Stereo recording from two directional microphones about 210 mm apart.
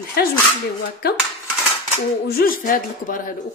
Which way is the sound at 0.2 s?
45° left (ahead or behind).